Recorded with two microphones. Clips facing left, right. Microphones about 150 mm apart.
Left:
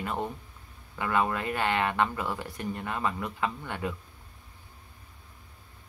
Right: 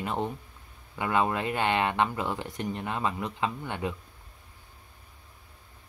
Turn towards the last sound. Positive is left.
turn(degrees=-20)  # may be behind; listen again after turning